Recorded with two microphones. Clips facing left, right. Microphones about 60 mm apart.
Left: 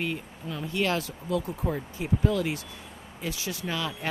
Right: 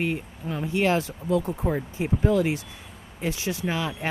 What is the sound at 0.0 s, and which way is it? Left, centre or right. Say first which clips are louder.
Speech: right 4 dB; right.